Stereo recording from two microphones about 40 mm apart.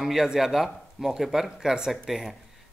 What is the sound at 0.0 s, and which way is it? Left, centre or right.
Speech, centre.